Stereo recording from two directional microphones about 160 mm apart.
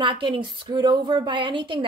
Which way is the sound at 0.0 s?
30° right (ahead or behind).